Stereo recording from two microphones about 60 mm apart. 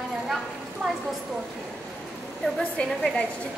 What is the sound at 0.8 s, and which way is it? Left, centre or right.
Speech, centre.